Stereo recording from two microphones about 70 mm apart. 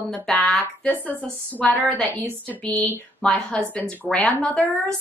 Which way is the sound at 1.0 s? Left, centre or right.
Left.